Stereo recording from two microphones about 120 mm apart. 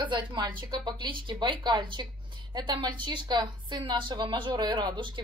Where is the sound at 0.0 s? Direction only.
40° right (ahead or behind).